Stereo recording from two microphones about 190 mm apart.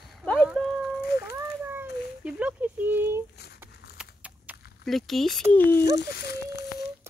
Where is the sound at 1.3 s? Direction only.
10° right (ahead or behind).